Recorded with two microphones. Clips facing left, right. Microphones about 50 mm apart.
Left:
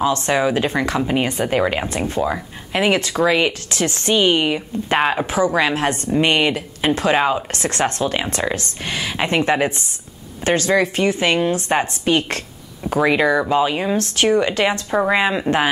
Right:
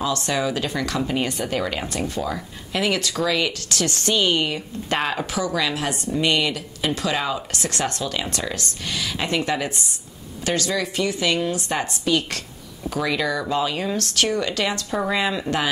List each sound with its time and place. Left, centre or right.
0.0 s speech: left